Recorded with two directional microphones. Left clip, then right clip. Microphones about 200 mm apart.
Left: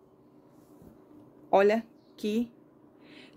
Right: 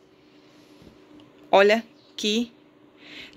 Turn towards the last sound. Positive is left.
turn(degrees=0)  # may be behind; listen again after turning